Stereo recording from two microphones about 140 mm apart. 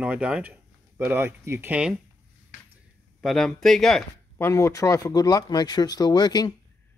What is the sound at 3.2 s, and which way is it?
Speech, 5° left (ahead or behind).